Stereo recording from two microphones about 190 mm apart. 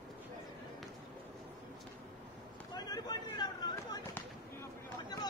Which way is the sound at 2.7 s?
20° left (ahead or behind).